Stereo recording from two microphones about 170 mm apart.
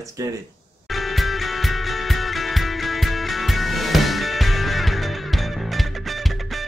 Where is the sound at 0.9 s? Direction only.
Centre (ahead or behind).